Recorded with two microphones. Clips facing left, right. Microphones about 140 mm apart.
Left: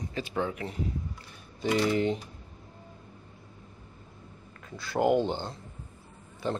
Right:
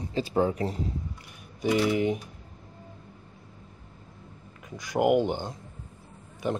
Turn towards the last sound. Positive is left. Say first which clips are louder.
# right 2 dB
turn(degrees=-15)  # may be behind; listen again after turning